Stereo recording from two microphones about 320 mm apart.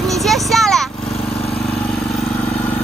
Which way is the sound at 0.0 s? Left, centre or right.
Centre.